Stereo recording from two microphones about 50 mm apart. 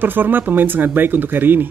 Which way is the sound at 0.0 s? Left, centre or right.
Right.